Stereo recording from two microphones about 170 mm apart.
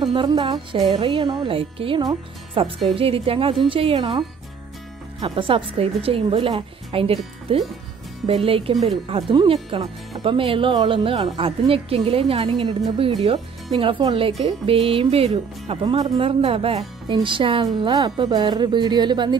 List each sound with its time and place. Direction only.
0.0 s speech: 25° right (ahead or behind)
5.2 s speech: 30° right (ahead or behind)
13.7 s speech: 30° right (ahead or behind)